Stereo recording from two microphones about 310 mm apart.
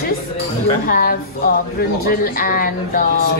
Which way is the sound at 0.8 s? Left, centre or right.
Left.